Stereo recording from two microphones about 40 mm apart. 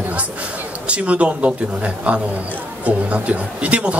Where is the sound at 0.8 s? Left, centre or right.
Right.